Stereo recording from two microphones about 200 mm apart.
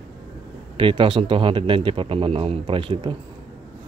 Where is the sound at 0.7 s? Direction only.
25° right (ahead or behind).